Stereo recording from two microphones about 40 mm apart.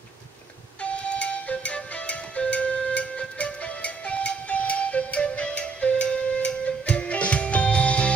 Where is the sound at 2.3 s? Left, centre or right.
Left.